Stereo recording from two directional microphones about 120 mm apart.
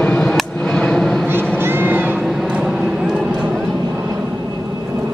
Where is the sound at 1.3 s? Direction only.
20° right (ahead or behind).